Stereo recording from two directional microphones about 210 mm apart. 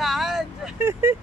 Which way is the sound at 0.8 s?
10° right (ahead or behind).